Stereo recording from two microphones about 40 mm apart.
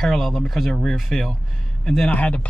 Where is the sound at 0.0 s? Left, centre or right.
Centre.